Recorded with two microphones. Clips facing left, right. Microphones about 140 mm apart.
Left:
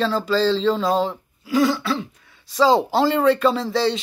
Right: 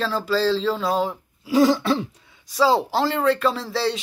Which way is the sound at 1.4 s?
35° right (ahead or behind).